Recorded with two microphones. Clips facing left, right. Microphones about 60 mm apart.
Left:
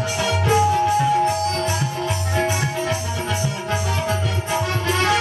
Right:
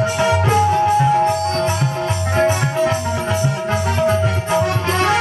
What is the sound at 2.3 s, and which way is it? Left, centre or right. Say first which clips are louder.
Music: right 7 dB; right.